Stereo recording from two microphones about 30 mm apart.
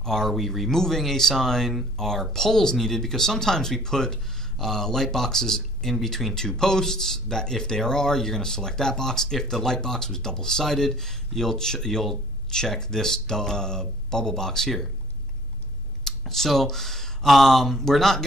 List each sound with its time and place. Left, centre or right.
0.0 s speech: centre
0.3 s speech: centre
0.7 s speech: centre
16.0 s a sound: centre
17.3 s speech: centre